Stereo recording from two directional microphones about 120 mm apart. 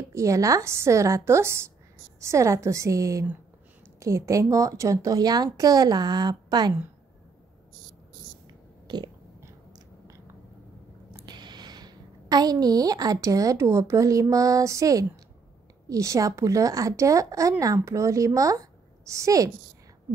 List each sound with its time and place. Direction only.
0.1 s a woman's voice: 25° right (ahead or behind)
8.8 s a sound: 35° right (ahead or behind)
9.4 s biting: 25° right (ahead or behind)
11.2 s a woman's voice: 35° right (ahead or behind)